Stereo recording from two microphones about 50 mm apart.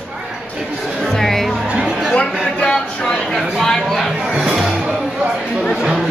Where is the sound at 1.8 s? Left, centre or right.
Centre.